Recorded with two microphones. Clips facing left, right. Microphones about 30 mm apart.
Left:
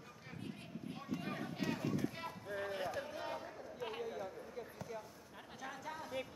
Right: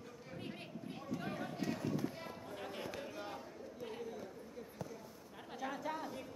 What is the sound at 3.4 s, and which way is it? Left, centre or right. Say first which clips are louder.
Chatter: left 2 dB; left.